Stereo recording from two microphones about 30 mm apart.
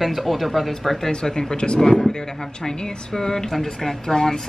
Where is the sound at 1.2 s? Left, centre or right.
Left.